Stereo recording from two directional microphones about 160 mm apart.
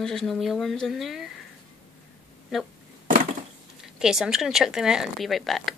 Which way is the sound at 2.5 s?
Centre (ahead or behind).